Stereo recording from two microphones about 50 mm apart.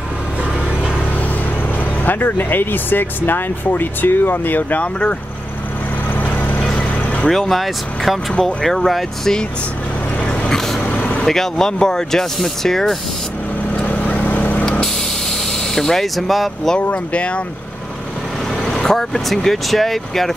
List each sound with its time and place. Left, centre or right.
2.0 s speech: left
6.1 s vehicle: left
7.2 s speech: centre
10.5 s vehicle: centre
10.8 s vehicle: left
11.2 s speech: centre
13.7 s vehicle: left
14.6 s vehicle: centre
15.7 s speech: centre
16.7 s speech: left
18.7 s speech: centre